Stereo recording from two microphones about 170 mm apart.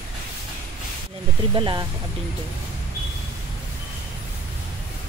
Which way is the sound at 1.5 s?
25° right (ahead or behind).